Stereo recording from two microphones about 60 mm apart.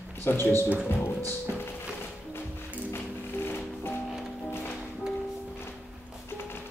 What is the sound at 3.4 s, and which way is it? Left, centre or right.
Music, left.